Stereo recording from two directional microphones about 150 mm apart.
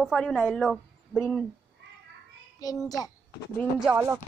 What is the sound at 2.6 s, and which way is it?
Child singing, 25° left (ahead or behind).